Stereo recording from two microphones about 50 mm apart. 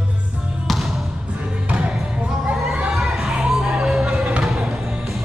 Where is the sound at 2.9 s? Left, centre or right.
Centre.